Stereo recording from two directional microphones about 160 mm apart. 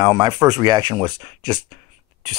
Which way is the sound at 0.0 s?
25° right (ahead or behind).